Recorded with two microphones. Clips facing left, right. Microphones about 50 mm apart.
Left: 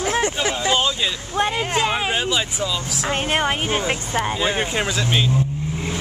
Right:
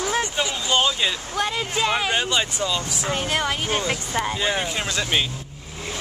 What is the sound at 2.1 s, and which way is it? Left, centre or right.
Speech, centre.